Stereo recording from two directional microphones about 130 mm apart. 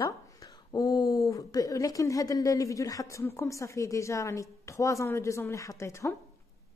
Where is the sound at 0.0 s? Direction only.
30° left (ahead or behind).